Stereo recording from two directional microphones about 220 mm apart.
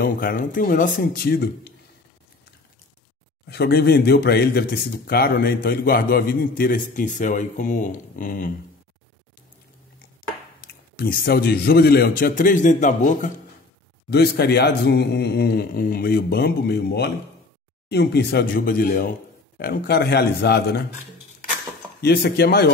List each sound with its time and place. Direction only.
0.0 s speech: 40° left (ahead or behind)
3.4 s speech: 45° left (ahead or behind)
10.6 s speech: 45° left (ahead or behind)
14.1 s a man's voice: 45° left (ahead or behind)
22.0 s a man's voice: 45° left (ahead or behind)